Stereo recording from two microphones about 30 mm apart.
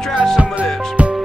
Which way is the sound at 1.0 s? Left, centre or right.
Right.